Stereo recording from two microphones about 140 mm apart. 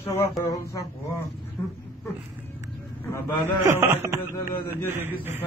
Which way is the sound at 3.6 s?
20° right (ahead or behind).